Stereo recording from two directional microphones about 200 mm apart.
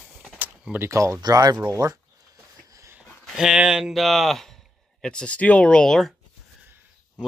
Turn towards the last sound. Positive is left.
turn(degrees=5)  # may be behind; listen again after turning